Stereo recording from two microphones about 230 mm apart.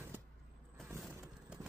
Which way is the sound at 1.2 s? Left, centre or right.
Centre.